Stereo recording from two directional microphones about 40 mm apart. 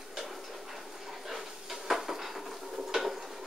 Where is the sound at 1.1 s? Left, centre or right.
Centre.